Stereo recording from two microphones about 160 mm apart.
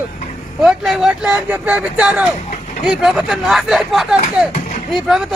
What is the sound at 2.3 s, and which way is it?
Vehicle, 45° left (ahead or behind).